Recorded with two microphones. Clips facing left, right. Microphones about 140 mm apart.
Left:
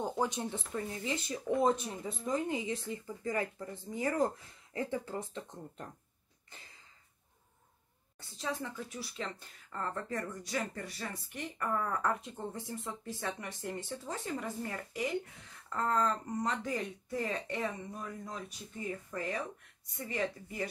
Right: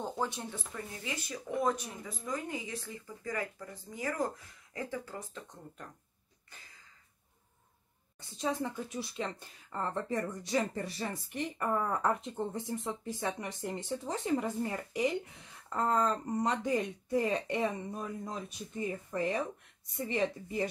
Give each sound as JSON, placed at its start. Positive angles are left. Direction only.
{"t": 0.0, "sound": "speech", "side_deg": 15}
{"t": 8.4, "sound": "speech", "side_deg": -20}